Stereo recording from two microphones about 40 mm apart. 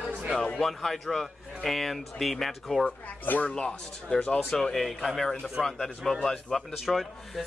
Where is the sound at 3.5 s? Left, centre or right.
Left.